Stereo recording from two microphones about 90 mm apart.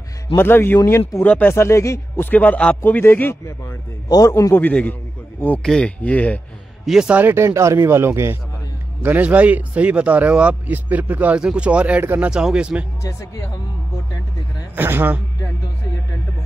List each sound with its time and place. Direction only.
0.4 s a man's voice: 25° left (ahead or behind)
1.2 s speech: 15° left (ahead or behind)
1.5 s speech: 30° left (ahead or behind)
4.1 s a man's voice: 40° left (ahead or behind)
4.6 s speech: 20° left (ahead or behind)
5.6 s speech: 10° left (ahead or behind)
6.9 s speech: 10° right (ahead or behind)
7.2 s speech: 25° right (ahead or behind)
9.0 s speech: 20° right (ahead or behind)
12.3 s speech: 10° right (ahead or behind)
14.8 s speech: 25° right (ahead or behind)